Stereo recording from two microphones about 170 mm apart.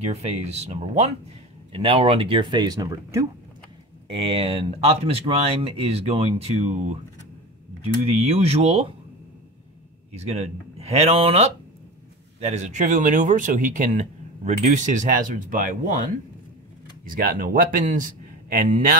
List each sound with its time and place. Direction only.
0.0 s speech: 40° right (ahead or behind); by 3.3 s 20° right (ahead or behind)
4.1 s speech: 35° right (ahead or behind)
10.1 s a man's voice: 40° right (ahead or behind); by 18.9 s 55° right (ahead or behind)